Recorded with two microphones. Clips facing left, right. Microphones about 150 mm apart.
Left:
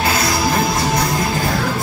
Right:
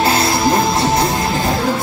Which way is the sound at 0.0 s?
25° right (ahead or behind).